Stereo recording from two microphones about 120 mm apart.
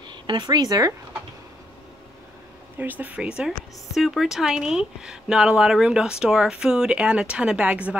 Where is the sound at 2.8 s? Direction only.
15° right (ahead or behind).